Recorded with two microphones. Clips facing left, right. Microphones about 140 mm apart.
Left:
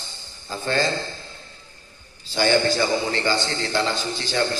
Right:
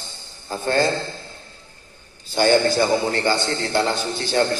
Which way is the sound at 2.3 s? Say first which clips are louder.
Right 3 dB; 50° right (ahead or behind).